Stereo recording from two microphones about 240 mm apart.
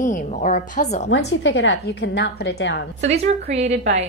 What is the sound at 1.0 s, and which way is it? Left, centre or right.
A woman's voice, left.